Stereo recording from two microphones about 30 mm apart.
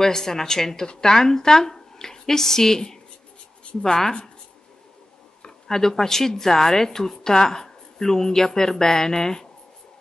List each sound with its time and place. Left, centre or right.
0.0 s a woman's voice: centre
5.7 s a woman's voice: centre